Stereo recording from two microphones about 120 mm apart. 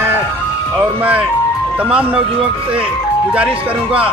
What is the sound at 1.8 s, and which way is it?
Speech, 10° right (ahead or behind).